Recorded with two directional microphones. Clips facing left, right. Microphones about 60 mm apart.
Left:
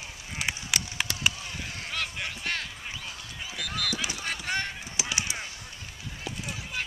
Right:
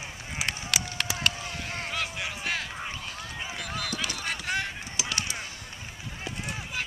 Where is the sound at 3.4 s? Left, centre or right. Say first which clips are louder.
Left 1 dB; right.